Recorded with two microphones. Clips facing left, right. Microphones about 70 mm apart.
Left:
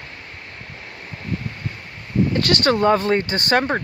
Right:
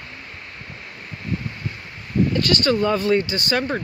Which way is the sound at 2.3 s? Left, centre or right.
Left.